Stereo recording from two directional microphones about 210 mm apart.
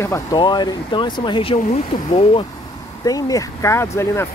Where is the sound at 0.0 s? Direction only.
15° left (ahead or behind).